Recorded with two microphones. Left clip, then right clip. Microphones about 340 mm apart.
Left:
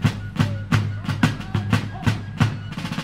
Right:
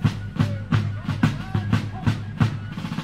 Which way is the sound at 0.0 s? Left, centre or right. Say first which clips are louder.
Left 2 dB; left.